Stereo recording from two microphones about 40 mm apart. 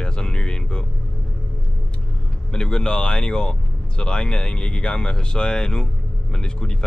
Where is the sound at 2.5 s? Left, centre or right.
Centre.